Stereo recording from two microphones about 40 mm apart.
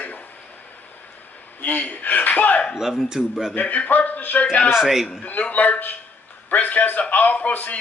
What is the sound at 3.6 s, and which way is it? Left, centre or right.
A man's voice, left.